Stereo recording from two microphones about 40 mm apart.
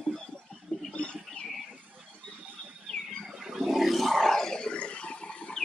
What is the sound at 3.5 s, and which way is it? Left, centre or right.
Roar, centre.